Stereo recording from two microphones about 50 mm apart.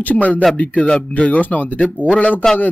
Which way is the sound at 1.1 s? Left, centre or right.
Left.